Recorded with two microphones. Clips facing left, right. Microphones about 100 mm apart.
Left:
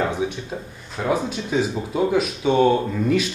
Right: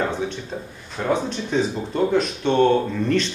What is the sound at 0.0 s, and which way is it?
Speech, 10° left (ahead or behind).